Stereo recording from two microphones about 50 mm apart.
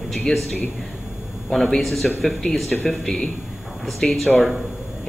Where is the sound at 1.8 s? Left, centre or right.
Centre.